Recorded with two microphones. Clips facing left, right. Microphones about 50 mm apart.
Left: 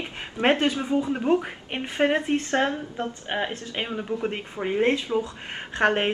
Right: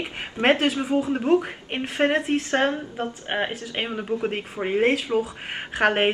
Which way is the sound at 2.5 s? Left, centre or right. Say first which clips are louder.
Right 2 dB; right.